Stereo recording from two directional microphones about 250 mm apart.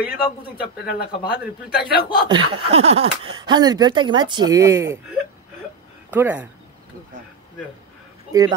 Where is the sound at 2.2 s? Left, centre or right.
Centre.